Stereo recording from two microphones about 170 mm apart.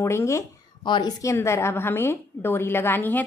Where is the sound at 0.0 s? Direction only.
15° left (ahead or behind).